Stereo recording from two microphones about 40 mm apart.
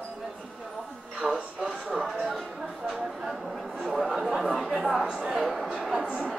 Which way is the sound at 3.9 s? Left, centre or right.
Centre.